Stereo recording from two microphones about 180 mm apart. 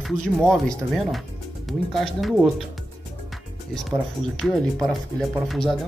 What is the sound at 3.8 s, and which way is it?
Speech, centre (ahead or behind).